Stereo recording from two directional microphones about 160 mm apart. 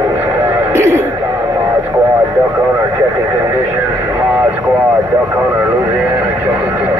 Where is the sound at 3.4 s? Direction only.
15° right (ahead or behind).